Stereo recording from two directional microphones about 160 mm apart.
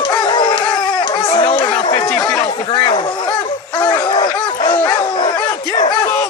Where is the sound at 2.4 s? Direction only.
35° left (ahead or behind).